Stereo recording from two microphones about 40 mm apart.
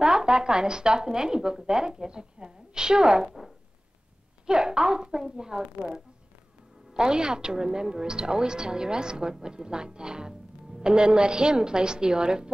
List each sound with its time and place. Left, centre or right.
0.0 s a woman's voice: centre
4.5 s a woman's voice: centre